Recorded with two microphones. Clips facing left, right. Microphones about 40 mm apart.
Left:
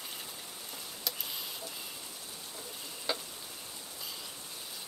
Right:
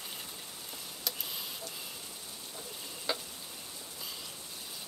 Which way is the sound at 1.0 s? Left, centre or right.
Centre.